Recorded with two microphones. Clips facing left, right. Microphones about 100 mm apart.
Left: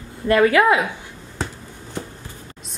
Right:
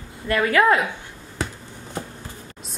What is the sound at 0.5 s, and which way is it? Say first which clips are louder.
Speech: left 1 dB; 10° left (ahead or behind).